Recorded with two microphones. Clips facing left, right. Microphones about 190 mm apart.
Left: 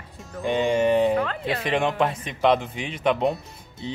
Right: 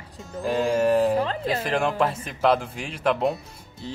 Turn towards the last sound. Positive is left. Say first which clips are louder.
# left 1 dB
turn(degrees=0)  # may be behind; listen again after turning